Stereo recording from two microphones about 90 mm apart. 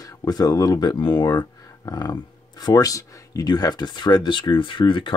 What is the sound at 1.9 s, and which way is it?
Speech, 45° left (ahead or behind).